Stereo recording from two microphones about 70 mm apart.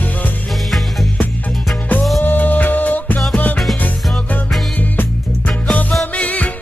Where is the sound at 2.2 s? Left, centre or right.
Left.